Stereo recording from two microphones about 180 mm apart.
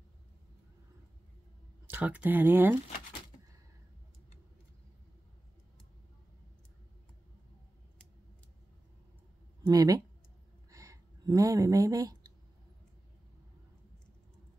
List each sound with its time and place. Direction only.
1.9 s speech: 10° right (ahead or behind)
9.6 s speech: 20° right (ahead or behind)
10.7 s a sound: 15° right (ahead or behind)